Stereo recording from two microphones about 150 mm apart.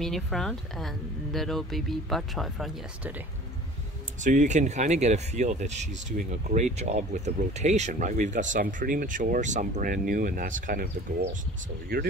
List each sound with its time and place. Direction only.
0.0 s speech: centre (ahead or behind)
4.2 s speech: 55° right (ahead or behind); by 11.2 s 75° right (ahead or behind)